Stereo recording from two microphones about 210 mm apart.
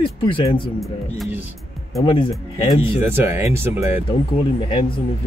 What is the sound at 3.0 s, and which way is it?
Speech, 10° right (ahead or behind).